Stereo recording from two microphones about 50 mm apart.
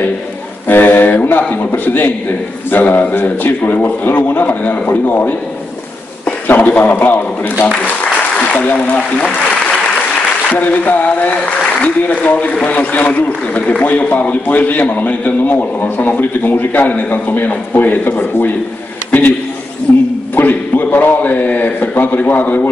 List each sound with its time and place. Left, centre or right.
0.7 s speech: left
2.7 s speech: left
6.4 s speech: left
8.4 s applause: left
8.8 s speech: left
10.5 s speech: left
20.3 s a man's voice: left